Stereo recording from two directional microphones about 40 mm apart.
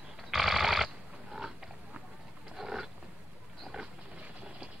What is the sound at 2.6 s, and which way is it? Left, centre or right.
Roaring cats, centre.